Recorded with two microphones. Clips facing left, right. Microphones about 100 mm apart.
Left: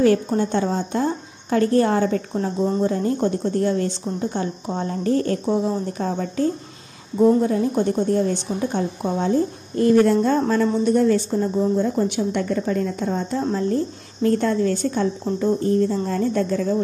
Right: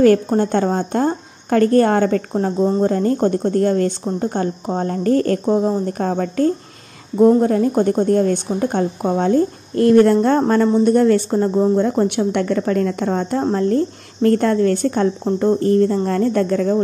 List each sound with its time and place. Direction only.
0.0 s a woman's voice: 50° right (ahead or behind)
5.5 s a woman's voice: 40° right (ahead or behind); by 6.5 s 60° right (ahead or behind)
7.2 s a woman's voice: 45° right (ahead or behind); by 13.4 s 70° right (ahead or behind)
13.4 s a woman's voice: 50° right (ahead or behind)